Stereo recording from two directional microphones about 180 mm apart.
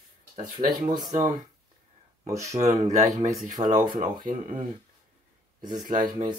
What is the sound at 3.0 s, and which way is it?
Speech, 20° right (ahead or behind).